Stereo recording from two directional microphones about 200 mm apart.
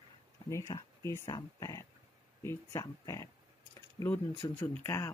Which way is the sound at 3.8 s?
10° left (ahead or behind).